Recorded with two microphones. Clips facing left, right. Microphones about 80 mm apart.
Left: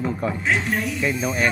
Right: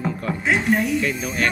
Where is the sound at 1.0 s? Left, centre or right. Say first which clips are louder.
Left 1 dB; centre.